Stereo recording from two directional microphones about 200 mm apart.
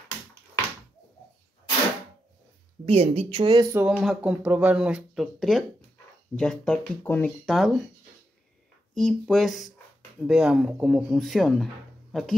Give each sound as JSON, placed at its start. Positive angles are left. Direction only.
{"t": 2.8, "sound": "speech", "side_deg": -30}
{"t": 3.7, "sound": "speech", "side_deg": -5}
{"t": 8.9, "sound": "speech", "side_deg": 0}